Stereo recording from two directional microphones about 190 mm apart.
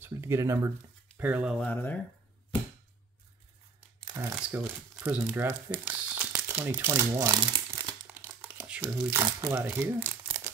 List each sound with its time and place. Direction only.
0.0 s speech: 15° right (ahead or behind)
1.6 s speech: 10° left (ahead or behind)
4.0 s crumpling: 20° right (ahead or behind)
4.4 s speech: 5° right (ahead or behind)
8.1 s crumpling: 15° right (ahead or behind)
9.6 s speech: 10° right (ahead or behind)